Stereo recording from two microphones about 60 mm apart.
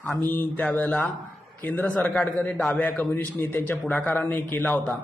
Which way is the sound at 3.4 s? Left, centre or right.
Left.